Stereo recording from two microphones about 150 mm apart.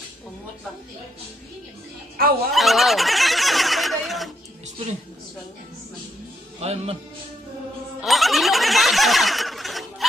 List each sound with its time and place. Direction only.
2.5 s neigh: centre (ahead or behind)
6.6 s a man's voice: 45° right (ahead or behind)
8.0 s a sound: centre (ahead or behind)